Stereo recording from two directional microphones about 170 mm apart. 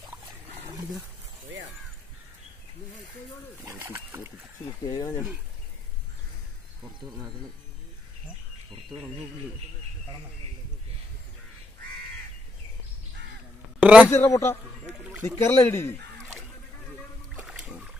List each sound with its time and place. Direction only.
3.6 s speech: 20° right (ahead or behind)
4.6 s speech: 20° left (ahead or behind)
13.7 s a man's voice: 10° right (ahead or behind)
14.1 s speech: 15° left (ahead or behind)
17.4 s a sound: 5° right (ahead or behind)